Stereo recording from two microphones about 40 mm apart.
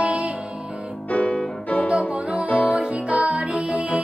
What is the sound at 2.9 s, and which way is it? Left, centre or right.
Music, right.